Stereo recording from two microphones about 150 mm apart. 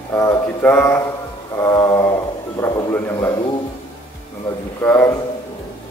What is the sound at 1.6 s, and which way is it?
Speech, 25° left (ahead or behind).